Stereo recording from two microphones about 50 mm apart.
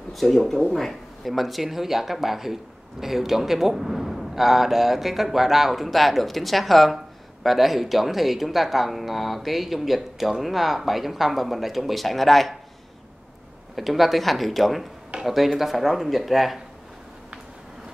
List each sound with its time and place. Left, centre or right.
0.1 s speech: centre
13.7 s speech: centre